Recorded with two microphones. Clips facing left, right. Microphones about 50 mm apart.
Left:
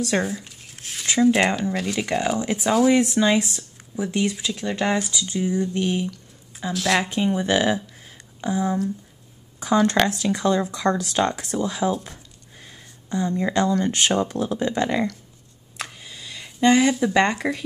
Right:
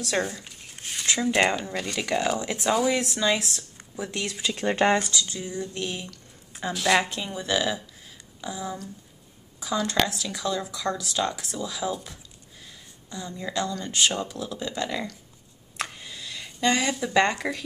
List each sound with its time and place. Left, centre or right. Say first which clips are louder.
0.2 s speech: left 3 dB; centre
2.9 s speech: left 6 dB; centre
4.6 s speech: right 2 dB; right
5.0 s speech: left 5 dB; centre
6.6 s speech: left 1 dB; centre
7.1 s speech: left 8 dB; left
7.7 s a sound: left 7 dB; left
8.5 s speech: left 10 dB; left
12.0 s a sound: left 3 dB; left
13.1 s speech: left 12 dB; left
13.4 s speech: left 7 dB; left
15.8 s a sound: right 1 dB; centre
16.9 s speech: left 3 dB; centre